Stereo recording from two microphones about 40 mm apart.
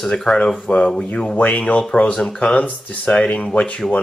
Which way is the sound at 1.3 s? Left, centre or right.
Left.